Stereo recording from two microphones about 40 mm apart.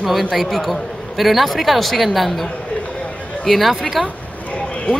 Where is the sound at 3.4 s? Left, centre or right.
Centre.